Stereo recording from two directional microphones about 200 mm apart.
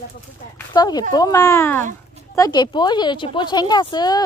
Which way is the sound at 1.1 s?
15° left (ahead or behind).